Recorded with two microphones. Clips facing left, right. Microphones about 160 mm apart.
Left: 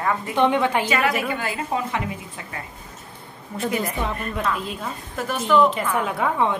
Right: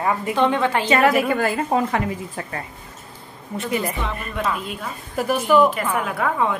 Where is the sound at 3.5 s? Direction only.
Centre (ahead or behind).